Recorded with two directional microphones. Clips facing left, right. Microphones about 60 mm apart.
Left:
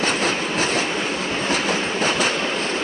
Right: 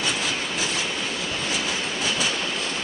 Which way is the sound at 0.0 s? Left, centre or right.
Left.